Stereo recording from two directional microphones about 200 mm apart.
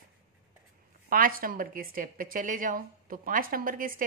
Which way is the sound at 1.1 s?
45° right (ahead or behind).